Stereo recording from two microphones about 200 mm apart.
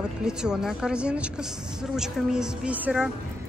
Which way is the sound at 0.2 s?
5° right (ahead or behind).